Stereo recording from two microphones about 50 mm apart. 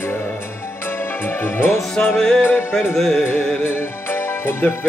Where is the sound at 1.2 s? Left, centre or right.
Left.